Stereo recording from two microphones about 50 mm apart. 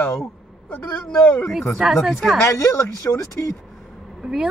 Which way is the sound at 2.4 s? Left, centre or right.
Left.